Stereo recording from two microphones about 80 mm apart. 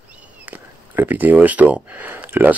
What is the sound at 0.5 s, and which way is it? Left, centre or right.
Speech, right.